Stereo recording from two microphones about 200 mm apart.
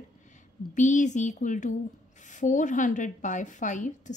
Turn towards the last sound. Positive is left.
turn(degrees=40)  # may be behind; listen again after turning